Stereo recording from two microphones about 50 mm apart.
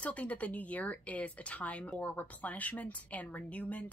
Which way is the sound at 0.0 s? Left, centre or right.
Left.